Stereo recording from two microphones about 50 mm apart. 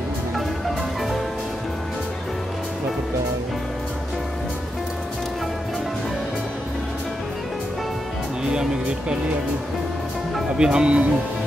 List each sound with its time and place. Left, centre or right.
8.5 s music: centre
10.6 s speech: centre